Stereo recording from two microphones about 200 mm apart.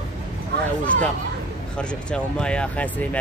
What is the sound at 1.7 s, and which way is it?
Speech, 5° left (ahead or behind).